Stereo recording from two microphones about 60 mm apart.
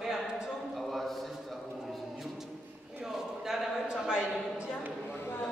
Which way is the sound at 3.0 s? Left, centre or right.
Centre.